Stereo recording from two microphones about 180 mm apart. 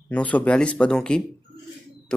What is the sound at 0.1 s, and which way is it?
Speech, 10° left (ahead or behind).